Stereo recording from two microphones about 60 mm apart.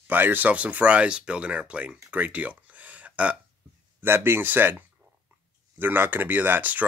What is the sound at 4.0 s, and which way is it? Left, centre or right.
Speech, right.